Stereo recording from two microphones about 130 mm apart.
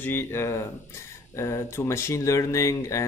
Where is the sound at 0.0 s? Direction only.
20° left (ahead or behind).